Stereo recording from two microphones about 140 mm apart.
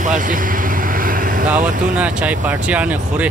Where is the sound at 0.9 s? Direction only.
80° right.